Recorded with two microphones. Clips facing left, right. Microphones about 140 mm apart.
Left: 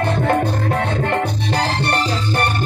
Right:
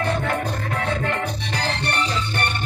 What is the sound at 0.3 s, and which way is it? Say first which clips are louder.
Music: left 7 dB; 35° left (ahead or behind).